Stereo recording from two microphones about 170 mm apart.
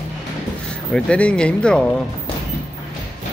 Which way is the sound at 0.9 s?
5° left (ahead or behind).